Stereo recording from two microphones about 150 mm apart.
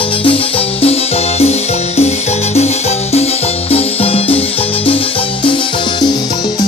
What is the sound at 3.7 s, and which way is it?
Music, 40° left (ahead or behind).